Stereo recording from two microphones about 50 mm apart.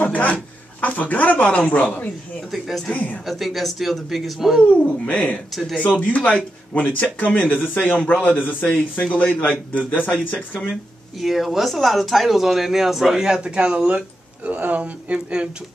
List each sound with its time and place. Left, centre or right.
0.0 s speech: left
3.3 s speech: centre
4.6 s speech: left
11.1 s speech: centre; by 13.8 s right
13.8 s speech: right